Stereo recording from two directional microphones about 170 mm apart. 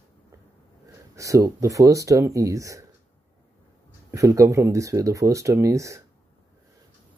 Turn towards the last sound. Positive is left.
turn(degrees=-15)  # may be behind; listen again after turning